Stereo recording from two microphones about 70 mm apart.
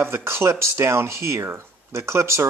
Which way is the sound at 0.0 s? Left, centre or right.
Right.